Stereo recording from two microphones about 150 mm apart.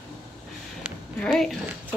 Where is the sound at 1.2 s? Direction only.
Centre (ahead or behind).